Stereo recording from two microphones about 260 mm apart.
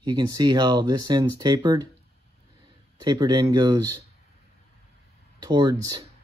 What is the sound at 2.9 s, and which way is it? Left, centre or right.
Speech, centre.